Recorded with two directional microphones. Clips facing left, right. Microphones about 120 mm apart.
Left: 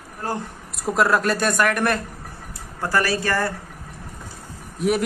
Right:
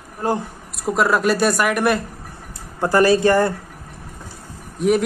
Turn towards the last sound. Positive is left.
turn(degrees=0)  # may be behind; listen again after turning